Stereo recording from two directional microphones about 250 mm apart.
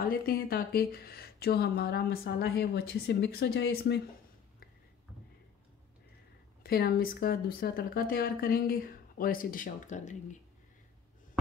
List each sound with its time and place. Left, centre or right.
0.0 s speech: left
6.6 s speech: left